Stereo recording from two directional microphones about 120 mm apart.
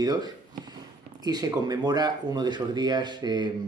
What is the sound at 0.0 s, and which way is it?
Speech, 35° right (ahead or behind).